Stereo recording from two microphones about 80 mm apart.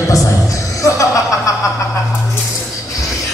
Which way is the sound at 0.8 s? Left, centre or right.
Left.